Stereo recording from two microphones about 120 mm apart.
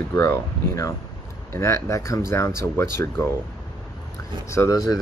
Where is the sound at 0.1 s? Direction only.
25° left (ahead or behind).